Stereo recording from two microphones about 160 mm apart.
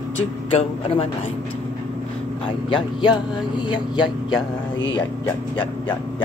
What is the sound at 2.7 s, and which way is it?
Speech, 30° left (ahead or behind).